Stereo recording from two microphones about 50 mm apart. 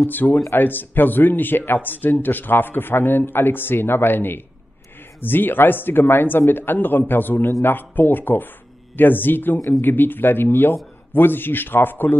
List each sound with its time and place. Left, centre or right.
0.1 s speech: left